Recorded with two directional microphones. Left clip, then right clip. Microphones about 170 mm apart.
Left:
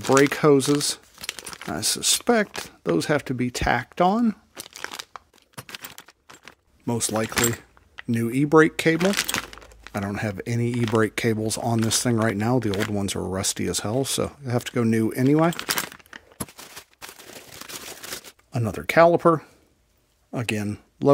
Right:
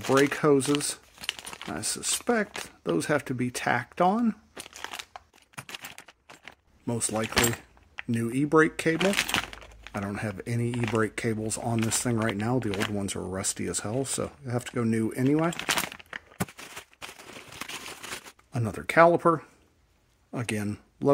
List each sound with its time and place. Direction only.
0.2 s speech: 45° left (ahead or behind)
1.2 s keys jangling: 10° left (ahead or behind)
1.7 s speech: 50° left (ahead or behind)
4.6 s crumpling: 15° left (ahead or behind)
6.9 s speech: 50° left (ahead or behind)
9.0 s crumpling: 10° left (ahead or behind)
9.9 s speech: 50° left (ahead or behind)
15.6 s a sound: 5° left (ahead or behind)
18.5 s speech: 35° left (ahead or behind)